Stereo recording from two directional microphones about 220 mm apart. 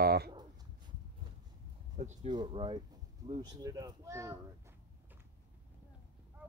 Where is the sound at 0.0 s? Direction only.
45° right (ahead or behind).